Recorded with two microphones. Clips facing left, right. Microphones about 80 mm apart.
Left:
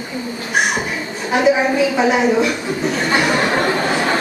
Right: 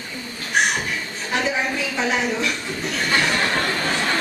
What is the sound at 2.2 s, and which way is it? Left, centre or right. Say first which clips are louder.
Speech: left 8 dB; centre.